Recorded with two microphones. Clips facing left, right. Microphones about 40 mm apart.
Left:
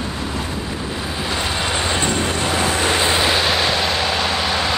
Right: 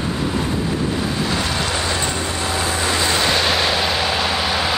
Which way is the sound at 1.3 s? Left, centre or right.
Centre.